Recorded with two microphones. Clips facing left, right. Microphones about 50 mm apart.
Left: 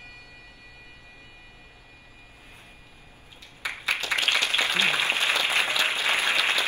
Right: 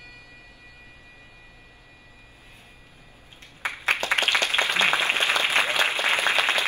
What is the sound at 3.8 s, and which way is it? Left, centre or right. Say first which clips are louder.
Applause: right 3 dB; right.